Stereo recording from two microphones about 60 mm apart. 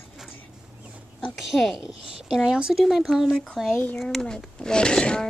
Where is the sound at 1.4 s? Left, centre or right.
Centre.